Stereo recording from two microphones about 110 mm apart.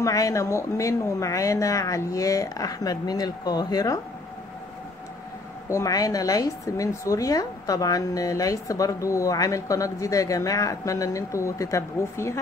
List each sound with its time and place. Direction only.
0.0 s a woman's voice: 30° left (ahead or behind)
5.7 s a woman's voice: 30° left (ahead or behind)